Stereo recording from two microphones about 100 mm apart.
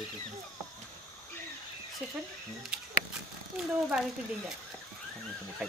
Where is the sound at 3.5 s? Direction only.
5° right (ahead or behind).